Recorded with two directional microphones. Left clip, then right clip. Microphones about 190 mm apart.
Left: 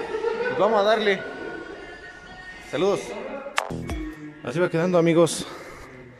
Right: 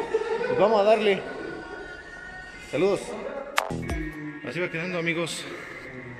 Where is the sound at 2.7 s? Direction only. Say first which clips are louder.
Left 1 dB; 5° right (ahead or behind).